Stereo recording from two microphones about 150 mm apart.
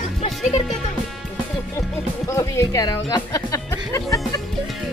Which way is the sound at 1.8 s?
20° left (ahead or behind).